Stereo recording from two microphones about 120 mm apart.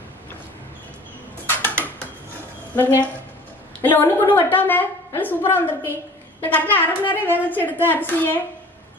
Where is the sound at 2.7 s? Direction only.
15° left (ahead or behind).